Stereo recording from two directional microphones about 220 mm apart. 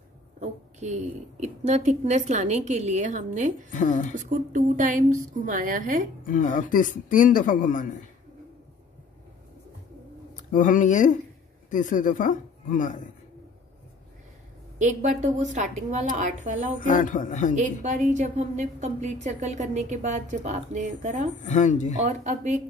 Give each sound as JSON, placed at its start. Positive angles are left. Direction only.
{"t": 0.4, "sound": "a woman's voice", "side_deg": -35}
{"t": 3.7, "sound": "a man's voice", "side_deg": 35}
{"t": 4.1, "sound": "a woman's voice", "side_deg": -35}
{"t": 6.2, "sound": "a man's voice", "side_deg": 35}
{"t": 10.3, "sound": "a man's voice", "side_deg": 35}
{"t": 14.8, "sound": "a woman's voice", "side_deg": -35}
{"t": 16.8, "sound": "a man's voice", "side_deg": 35}
{"t": 17.6, "sound": "a woman's voice", "side_deg": -35}
{"t": 21.5, "sound": "a man's voice", "side_deg": 35}
{"t": 21.9, "sound": "a woman's voice", "side_deg": -35}